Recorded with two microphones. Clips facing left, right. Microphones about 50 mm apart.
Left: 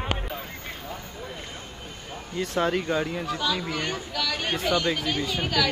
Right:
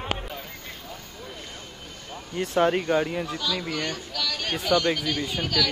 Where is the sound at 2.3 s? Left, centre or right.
Right.